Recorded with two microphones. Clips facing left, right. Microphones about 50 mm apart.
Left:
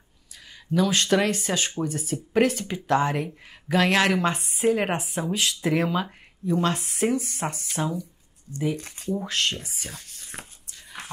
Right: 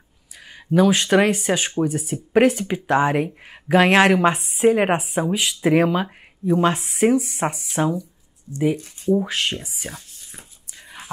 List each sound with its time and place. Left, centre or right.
0.5 s a sound: right
0.8 s speech: centre
4.4 s speech: centre
4.6 s speech: right
8.7 s speech: left
9.1 s speech: centre
9.8 s speech: right
10.3 s speech: left